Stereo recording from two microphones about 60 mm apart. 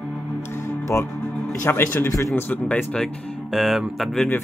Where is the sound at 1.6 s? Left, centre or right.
Left.